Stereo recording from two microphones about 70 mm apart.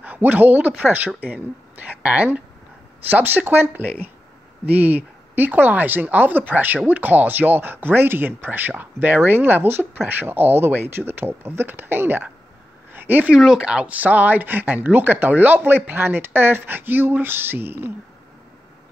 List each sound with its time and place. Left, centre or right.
0.0 s speech: right
12.9 s a sound: right
13.3 s speech: centre; by 17.9 s right